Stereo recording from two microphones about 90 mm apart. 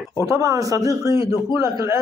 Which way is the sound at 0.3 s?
35° right (ahead or behind).